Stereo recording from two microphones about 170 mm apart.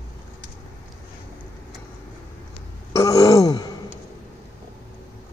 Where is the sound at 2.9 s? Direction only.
20° left (ahead or behind).